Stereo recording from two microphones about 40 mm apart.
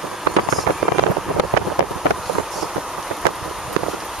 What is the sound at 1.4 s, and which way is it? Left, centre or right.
Vehicle, centre.